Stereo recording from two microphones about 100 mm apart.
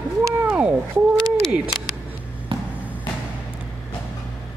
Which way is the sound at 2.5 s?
60° right (ahead or behind).